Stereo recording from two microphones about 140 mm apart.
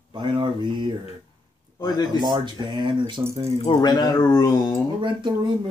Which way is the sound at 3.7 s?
30° left (ahead or behind).